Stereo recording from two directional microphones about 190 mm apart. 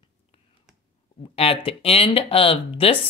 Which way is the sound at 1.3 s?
30° left (ahead or behind).